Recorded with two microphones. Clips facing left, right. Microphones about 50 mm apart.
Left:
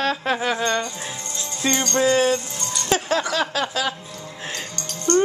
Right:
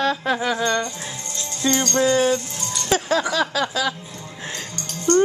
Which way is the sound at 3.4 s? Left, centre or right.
Left.